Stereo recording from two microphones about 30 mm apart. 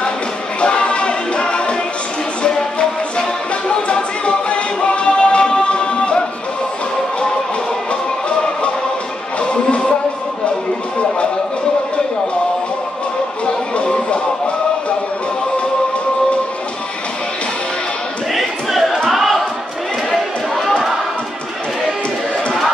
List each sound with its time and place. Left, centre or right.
0.6 s music: left
3.6 s music: left
9.4 s music: left
18.3 s a sound: centre